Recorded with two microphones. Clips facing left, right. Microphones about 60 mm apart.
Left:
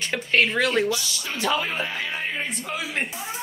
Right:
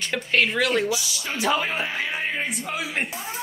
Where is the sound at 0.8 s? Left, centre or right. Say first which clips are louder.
Even; centre.